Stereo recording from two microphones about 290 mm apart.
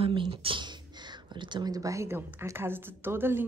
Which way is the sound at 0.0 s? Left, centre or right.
Centre.